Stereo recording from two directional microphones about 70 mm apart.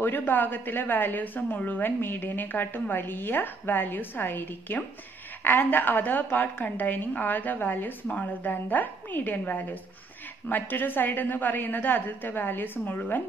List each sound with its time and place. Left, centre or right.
0.0 s a woman's voice: left